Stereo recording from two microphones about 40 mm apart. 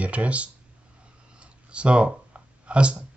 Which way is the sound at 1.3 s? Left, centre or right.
Right.